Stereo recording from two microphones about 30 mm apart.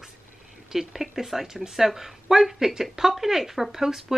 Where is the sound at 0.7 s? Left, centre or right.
Centre.